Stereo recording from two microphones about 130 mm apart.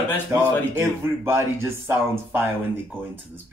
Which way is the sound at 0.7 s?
15° right (ahead or behind).